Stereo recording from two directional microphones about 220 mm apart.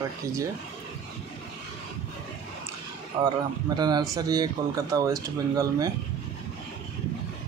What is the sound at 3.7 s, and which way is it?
Speech, 20° right (ahead or behind).